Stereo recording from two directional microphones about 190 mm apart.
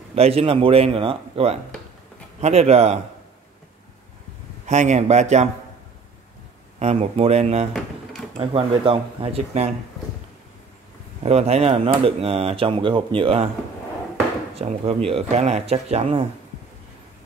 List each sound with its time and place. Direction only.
0.1 s speech: 30° right (ahead or behind)
4.6 s speech: 40° right (ahead or behind)
6.8 s speech: 35° right (ahead or behind)
7.7 s drawer open or close: centre (ahead or behind)
8.4 s speech: 30° right (ahead or behind)
11.2 s speech: 35° right (ahead or behind)
14.5 s speech: 30° right (ahead or behind)